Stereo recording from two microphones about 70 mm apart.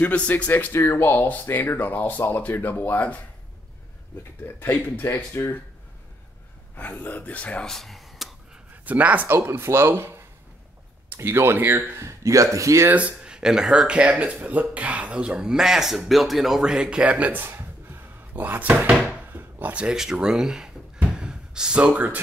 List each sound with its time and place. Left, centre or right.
0.0 s speech: left
0.7 s speech: left
4.2 s speech: left
6.8 s speech: left
7.6 s a sound: centre
8.8 s speech: right
9.5 s speech: right
12.0 s speech: right
12.9 s speech: centre
19.3 s drawer open or close: right
19.7 s speech: centre
21.1 s a sound: centre